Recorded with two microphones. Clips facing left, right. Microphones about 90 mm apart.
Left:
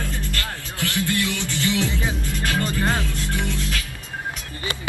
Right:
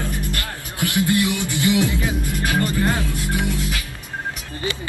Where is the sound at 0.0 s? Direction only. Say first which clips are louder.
Right 2 dB; 15° right (ahead or behind).